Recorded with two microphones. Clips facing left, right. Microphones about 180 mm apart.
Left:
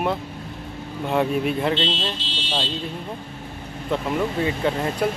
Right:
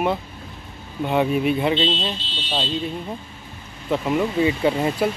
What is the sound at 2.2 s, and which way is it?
Car alarm, 85° left.